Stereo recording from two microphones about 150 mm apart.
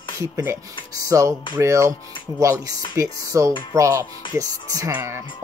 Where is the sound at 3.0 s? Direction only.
20° right (ahead or behind).